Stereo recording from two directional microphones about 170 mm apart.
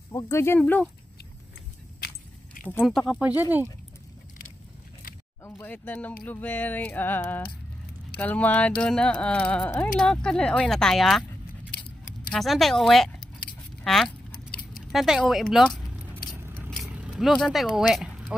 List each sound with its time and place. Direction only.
0.1 s speech: 20° left (ahead or behind)
2.0 s keys jangling: 65° left (ahead or behind)
2.8 s speech: centre (ahead or behind)
3.2 s speech: 10° right (ahead or behind)
5.4 s speech: 10° left (ahead or behind)
12.3 s speech: centre (ahead or behind)
16.3 s vehicle: 15° right (ahead or behind)
16.8 s speech: 5° right (ahead or behind)